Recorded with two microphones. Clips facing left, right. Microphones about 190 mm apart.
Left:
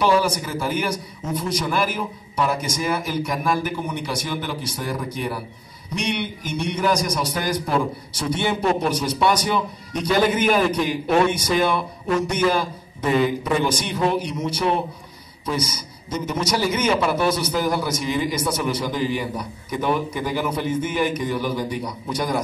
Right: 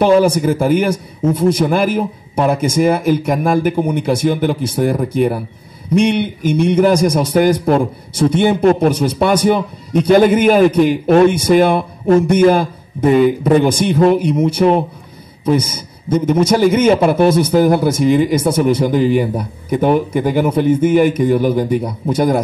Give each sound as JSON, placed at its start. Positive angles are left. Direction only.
{"t": 0.0, "sound": "a man's voice", "side_deg": -55}